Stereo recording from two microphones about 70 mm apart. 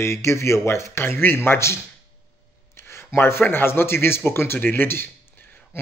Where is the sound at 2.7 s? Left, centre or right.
Left.